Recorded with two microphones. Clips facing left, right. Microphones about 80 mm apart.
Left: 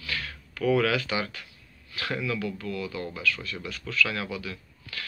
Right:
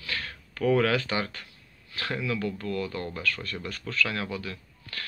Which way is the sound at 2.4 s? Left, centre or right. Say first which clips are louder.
Right 2 dB; right.